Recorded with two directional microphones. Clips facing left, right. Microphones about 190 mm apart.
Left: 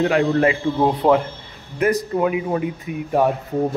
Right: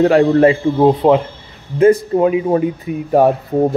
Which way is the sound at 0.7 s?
20° right (ahead or behind).